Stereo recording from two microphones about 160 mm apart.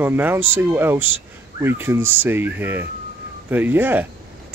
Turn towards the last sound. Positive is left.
turn(degrees=-10)  # may be behind; listen again after turning